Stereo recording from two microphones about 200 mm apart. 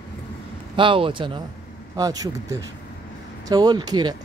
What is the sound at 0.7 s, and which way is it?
Speech, 25° right (ahead or behind).